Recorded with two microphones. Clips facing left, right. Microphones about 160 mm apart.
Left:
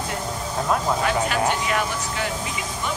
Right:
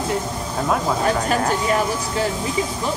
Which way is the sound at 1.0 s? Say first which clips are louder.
Right 2 dB; 35° right (ahead or behind).